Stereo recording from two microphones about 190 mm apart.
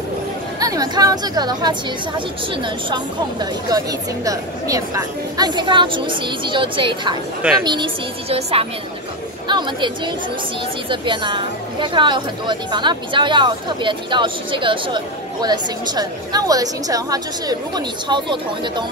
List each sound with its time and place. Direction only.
0.6 s a woman's voice: 20° right (ahead or behind)